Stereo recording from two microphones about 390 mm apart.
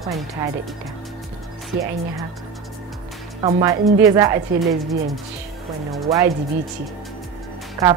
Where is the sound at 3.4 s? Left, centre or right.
Centre.